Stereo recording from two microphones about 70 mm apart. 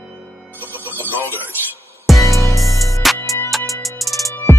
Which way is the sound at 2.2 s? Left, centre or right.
Left.